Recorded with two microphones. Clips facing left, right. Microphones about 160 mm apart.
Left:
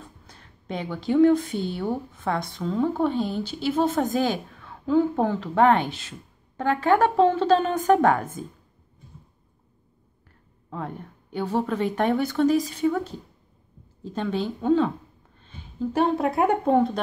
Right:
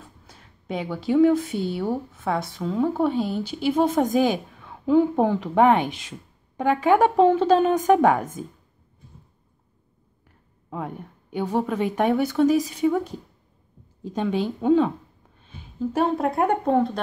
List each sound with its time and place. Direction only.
0.3 s speech: 10° right (ahead or behind)
10.7 s speech: 10° right (ahead or behind)